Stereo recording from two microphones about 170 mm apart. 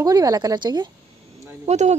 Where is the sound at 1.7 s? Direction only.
40° right (ahead or behind).